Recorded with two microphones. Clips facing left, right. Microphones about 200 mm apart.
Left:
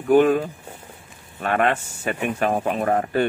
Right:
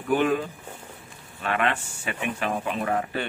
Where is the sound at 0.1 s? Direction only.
45° left (ahead or behind).